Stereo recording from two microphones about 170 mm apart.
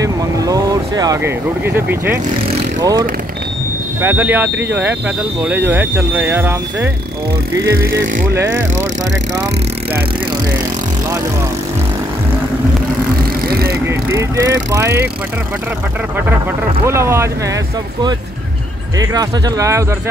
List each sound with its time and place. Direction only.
0.0 s speech: 20° right (ahead or behind)
13.5 s vehicle: 65° right (ahead or behind)
13.8 s speech: 20° right (ahead or behind)
16.8 s speech: 15° right (ahead or behind)
18.9 s speech: 20° right (ahead or behind)